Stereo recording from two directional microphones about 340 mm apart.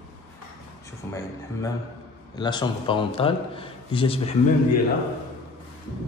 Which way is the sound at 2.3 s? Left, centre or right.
Centre.